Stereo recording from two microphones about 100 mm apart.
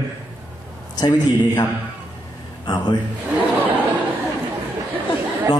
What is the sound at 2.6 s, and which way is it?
Speech, 45° left (ahead or behind).